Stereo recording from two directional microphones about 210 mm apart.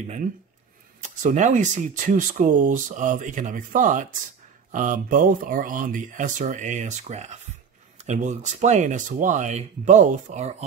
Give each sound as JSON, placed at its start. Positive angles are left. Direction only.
{"t": 1.0, "sound": "speech", "side_deg": -35}